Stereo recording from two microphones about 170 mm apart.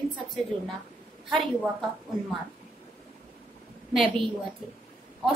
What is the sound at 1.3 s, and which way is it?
Speech, centre (ahead or behind).